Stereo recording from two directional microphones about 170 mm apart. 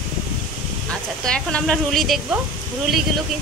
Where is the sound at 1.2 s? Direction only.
5° left (ahead or behind).